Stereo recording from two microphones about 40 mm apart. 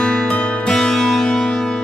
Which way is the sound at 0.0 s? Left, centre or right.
Centre.